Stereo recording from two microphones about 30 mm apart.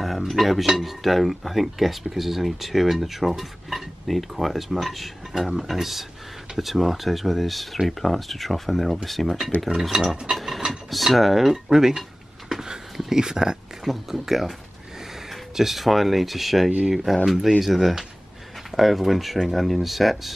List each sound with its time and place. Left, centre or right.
0.3 s speech: centre
9.8 s speech: centre
10.3 s filing: centre
10.7 s cutlery: centre
11.1 s speech: centre
13.1 s speech: right
13.9 s speech: centre
15.5 s speech: centre